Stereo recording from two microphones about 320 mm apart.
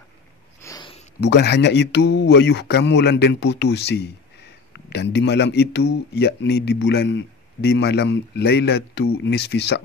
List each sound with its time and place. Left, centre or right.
0.6 s a sound: centre
1.2 s speech: left
5.1 s speech: left